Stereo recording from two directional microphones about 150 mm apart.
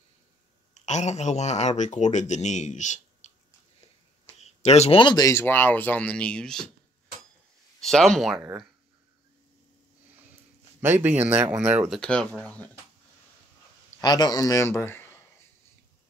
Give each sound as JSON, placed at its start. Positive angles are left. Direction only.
{"t": 0.7, "sound": "speech", "side_deg": 50}
{"t": 7.8, "sound": "speech", "side_deg": 0}
{"t": 8.4, "sound": "speech", "side_deg": -15}
{"t": 10.8, "sound": "speech", "side_deg": -15}
{"t": 11.9, "sound": "speech", "side_deg": 5}
{"t": 14.0, "sound": "a man's voice", "side_deg": 30}